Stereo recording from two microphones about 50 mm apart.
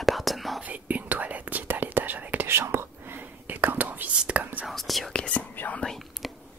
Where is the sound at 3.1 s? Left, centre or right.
Right.